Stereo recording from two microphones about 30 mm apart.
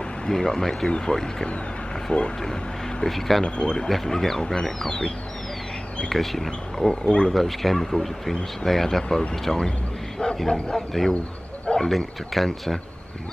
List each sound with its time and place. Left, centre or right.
0.3 s speech: centre
0.8 s speech: left
2.1 s speech: left
3.1 s speech: centre
3.4 s speech: left
3.9 s speech: centre
6.1 s speech: centre
6.8 s speech: left
7.3 s speech: centre
11.7 s a sound: left
12.3 s speech: centre